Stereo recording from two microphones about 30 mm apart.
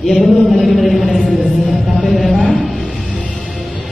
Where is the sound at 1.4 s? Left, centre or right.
Left.